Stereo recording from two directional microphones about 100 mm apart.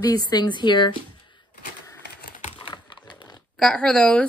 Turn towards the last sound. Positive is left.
turn(degrees=10)  # may be behind; listen again after turning